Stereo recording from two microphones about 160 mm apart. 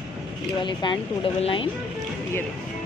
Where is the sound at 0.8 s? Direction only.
30° left (ahead or behind).